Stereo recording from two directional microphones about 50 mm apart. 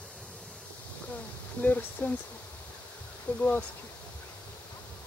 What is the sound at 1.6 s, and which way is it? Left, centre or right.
Speech, left.